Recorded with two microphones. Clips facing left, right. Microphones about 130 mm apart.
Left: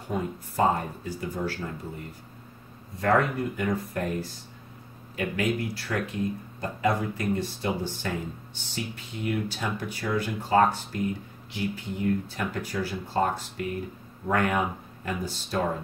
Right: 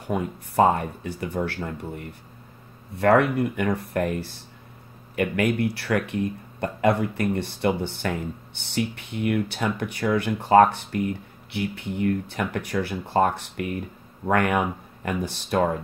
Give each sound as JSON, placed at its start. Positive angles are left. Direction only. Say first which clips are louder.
{"t": 0.1, "sound": "speech", "louder": "right 5 dB", "side_deg": -65}
{"t": 3.0, "sound": "speech", "louder": "right 5 dB", "side_deg": -70}